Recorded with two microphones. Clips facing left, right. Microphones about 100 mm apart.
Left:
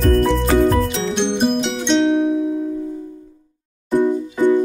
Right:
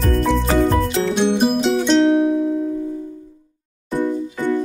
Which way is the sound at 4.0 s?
15° left (ahead or behind).